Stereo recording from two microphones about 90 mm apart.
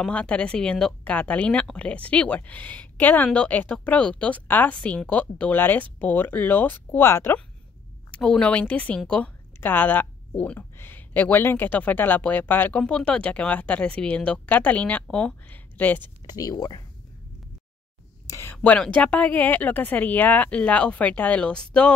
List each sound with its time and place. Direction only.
0.0 s speech: 15° left (ahead or behind); by 7.3 s 30° left (ahead or behind)
8.1 s speech: 10° left (ahead or behind)
16.3 s speech: 45° left (ahead or behind)
18.3 s a sound: 30° left (ahead or behind)
18.6 s speech: 15° left (ahead or behind)